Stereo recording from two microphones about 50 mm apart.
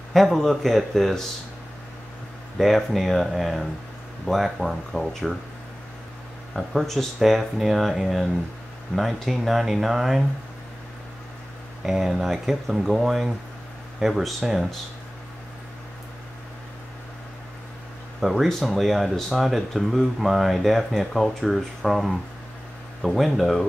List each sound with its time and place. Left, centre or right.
0.1 s speech: centre
2.5 s speech: centre
6.5 s speech: centre
11.8 s speech: centre
18.2 s speech: centre